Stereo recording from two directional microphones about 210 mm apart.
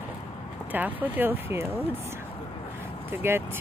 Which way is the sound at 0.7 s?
10° right (ahead or behind).